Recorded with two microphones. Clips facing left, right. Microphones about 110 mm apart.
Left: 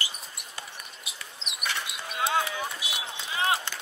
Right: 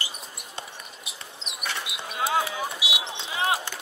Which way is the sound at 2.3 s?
30° right (ahead or behind).